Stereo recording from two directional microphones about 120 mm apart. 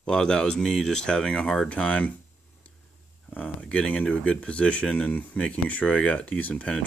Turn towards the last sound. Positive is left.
turn(degrees=10)  # may be behind; listen again after turning